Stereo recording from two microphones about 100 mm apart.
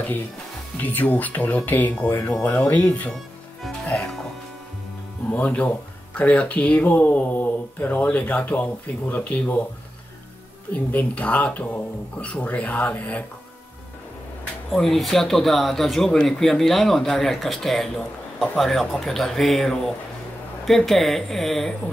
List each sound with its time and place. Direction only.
0.8 s speech: 15° left (ahead or behind)
3.6 s music: 5° left (ahead or behind)
5.3 s speech: 15° left (ahead or behind)
10.7 s speech: 15° left (ahead or behind)
14.7 s speech: 5° left (ahead or behind)